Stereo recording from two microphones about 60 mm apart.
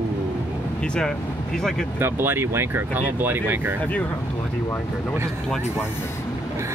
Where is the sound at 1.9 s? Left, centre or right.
Right.